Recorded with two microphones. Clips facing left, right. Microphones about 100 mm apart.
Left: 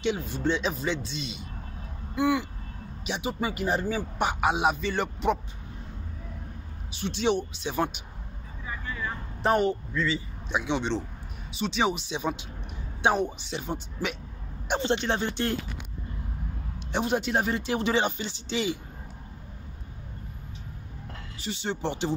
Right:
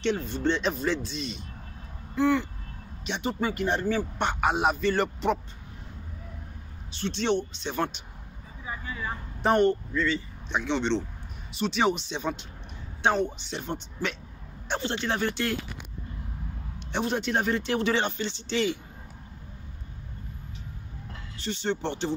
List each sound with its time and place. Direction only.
0.0 s a man's voice: 5° left (ahead or behind)
6.9 s speech: 10° left (ahead or behind)
8.6 s vehicle: 15° right (ahead or behind)
9.4 s a man's voice: centre (ahead or behind)
14.7 s speech: 20° left (ahead or behind)
16.9 s speech: 10° left (ahead or behind)
21.4 s speech: 5° left (ahead or behind)